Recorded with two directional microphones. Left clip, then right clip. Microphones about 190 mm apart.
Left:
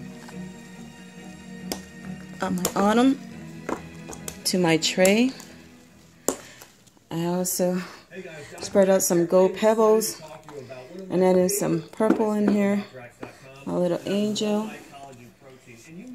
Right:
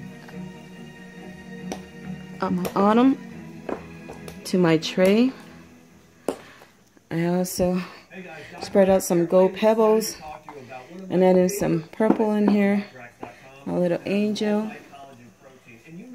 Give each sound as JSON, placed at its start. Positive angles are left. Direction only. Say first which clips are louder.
{"t": 2.4, "sound": "speech", "louder": "right 2 dB", "side_deg": -15}
{"t": 4.4, "sound": "speech", "louder": "right 1 dB", "side_deg": -20}
{"t": 7.1, "sound": "speech", "louder": "right 2 dB", "side_deg": -25}